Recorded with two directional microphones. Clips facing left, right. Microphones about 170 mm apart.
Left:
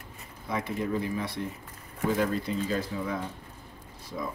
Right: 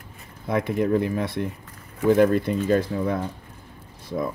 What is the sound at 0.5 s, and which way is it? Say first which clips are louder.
Speech: right 8 dB; 55° right (ahead or behind).